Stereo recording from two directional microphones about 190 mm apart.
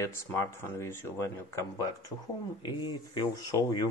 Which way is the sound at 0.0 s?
15° left (ahead or behind).